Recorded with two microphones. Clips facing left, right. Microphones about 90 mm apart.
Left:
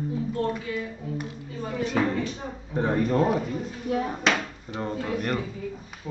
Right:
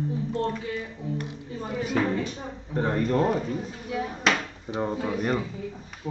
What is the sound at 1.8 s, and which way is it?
Speech, 5° right (ahead or behind).